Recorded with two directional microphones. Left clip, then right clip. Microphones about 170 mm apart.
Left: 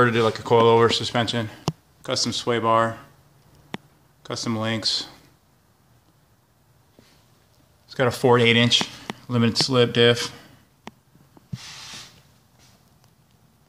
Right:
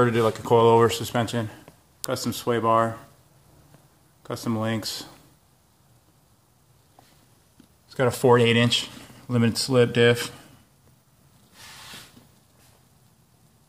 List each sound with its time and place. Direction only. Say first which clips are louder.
0.0 s speech: left 2 dB; centre (ahead or behind)
4.2 s speech: left 1 dB; 5° right (ahead or behind)
7.9 s speech: even; 5° right (ahead or behind)